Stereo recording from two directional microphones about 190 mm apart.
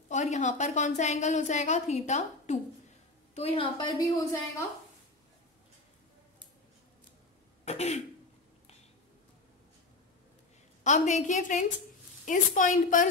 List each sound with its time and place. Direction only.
0.1 s a woman's voice: 40° left (ahead or behind)
4.2 s a woman's voice: 15° left (ahead or behind)
7.6 s a woman's voice: 35° left (ahead or behind)
10.8 s a woman's voice: 40° left (ahead or behind)